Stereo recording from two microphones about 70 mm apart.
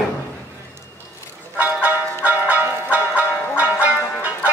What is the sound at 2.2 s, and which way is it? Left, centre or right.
Music, right.